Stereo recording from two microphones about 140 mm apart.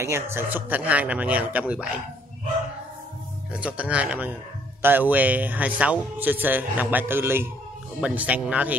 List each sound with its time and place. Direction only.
0.0 s speech: 20° right (ahead or behind)
3.5 s speech: 10° right (ahead or behind)